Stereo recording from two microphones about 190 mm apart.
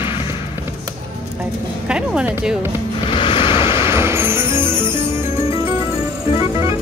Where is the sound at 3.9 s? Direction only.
15° right (ahead or behind).